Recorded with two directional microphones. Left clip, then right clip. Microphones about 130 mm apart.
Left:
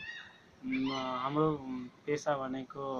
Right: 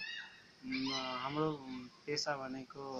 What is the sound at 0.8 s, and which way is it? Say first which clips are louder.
Speech: left 4 dB; 5° left (ahead or behind).